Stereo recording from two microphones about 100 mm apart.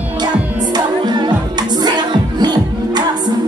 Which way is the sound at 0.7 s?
45° right (ahead or behind).